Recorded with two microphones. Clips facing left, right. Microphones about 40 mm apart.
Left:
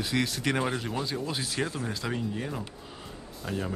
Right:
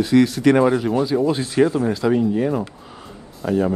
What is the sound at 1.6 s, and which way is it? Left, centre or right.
Speech, right.